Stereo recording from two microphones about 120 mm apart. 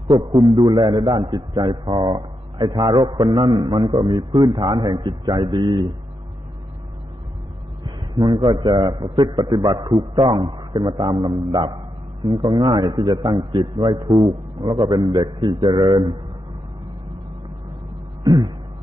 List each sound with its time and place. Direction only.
0.1 s a man's voice: 40° right (ahead or behind)
7.8 s a man's voice: 40° right (ahead or behind)
18.2 s a sound: 30° right (ahead or behind)